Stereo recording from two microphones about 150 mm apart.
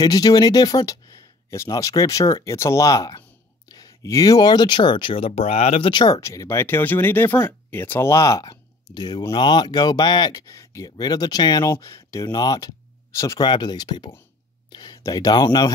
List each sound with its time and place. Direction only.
0.0 s speech: 25° left (ahead or behind)